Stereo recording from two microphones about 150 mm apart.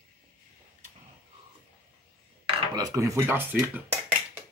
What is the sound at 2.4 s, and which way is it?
Dishes, 30° right (ahead or behind).